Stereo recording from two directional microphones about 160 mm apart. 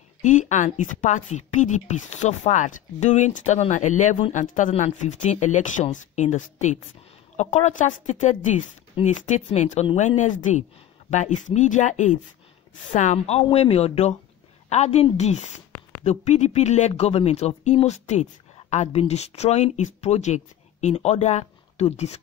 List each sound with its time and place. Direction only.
0.2 s a woman's voice: 50° left (ahead or behind)